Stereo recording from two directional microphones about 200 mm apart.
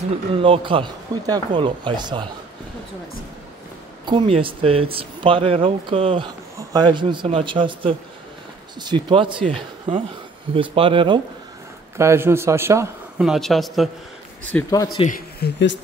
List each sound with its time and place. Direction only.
0.3 s speech: 25° right (ahead or behind)
4.0 s speech: 25° right (ahead or behind)
12.0 s a man's voice: 15° right (ahead or behind)
13.3 s speech: centre (ahead or behind)
14.4 s speech: 10° left (ahead or behind)
15.0 s speech: 45° left (ahead or behind)